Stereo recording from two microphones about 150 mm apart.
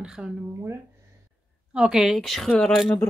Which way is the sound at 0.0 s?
5° right (ahead or behind).